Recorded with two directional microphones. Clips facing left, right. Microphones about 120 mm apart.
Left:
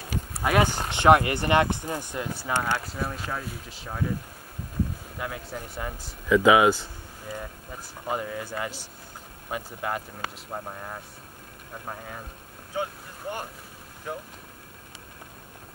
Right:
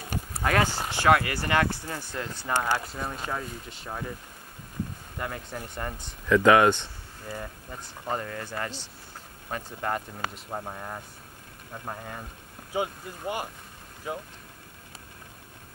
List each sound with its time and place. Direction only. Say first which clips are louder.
0.4 s speech: left 2 dB; 15° left (ahead or behind)
2.5 s a man's voice: right 1 dB; centre (ahead or behind)
5.2 s a man's voice: even; centre (ahead or behind)